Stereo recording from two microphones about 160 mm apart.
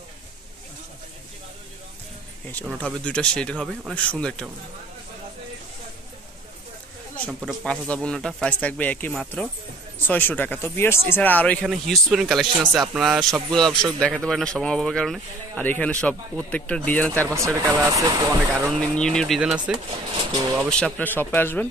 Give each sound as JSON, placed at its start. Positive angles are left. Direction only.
{"t": 2.5, "sound": "speech", "side_deg": 5}
{"t": 7.4, "sound": "speech", "side_deg": 5}
{"t": 17.3, "sound": "speech", "side_deg": -20}
{"t": 18.7, "sound": "speech", "side_deg": 5}
{"t": 20.1, "sound": "a sound", "side_deg": -35}
{"t": 20.7, "sound": "speech", "side_deg": 10}